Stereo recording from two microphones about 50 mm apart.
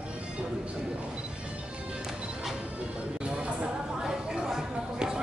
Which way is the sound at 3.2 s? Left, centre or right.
Right.